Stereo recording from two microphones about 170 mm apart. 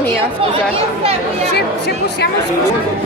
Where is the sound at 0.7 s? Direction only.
35° right (ahead or behind).